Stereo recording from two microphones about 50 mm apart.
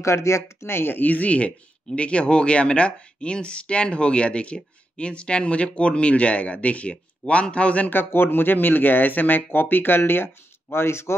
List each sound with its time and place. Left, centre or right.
0.0 s speech: left
7.9 s speech: left